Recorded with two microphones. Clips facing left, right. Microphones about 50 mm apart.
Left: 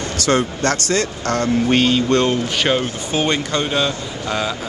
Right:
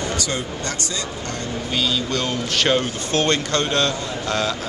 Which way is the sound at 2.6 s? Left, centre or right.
Centre.